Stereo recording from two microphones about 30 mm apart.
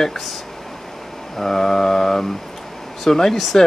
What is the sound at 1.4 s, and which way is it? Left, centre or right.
Speech, centre.